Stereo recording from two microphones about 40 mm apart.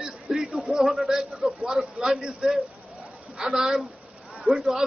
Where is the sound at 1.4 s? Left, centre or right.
Centre.